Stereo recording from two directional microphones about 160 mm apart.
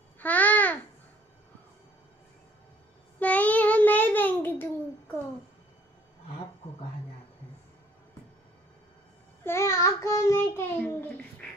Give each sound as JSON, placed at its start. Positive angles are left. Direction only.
{"t": 0.2, "sound": "babbling", "side_deg": 10}
{"t": 3.2, "sound": "babbling", "side_deg": 10}
{"t": 9.4, "sound": "child singing", "side_deg": 15}